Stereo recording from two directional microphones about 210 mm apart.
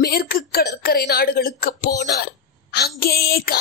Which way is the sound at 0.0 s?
45° left (ahead or behind).